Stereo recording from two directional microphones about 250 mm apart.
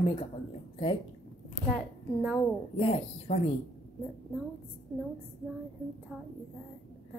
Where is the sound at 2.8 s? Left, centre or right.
Left.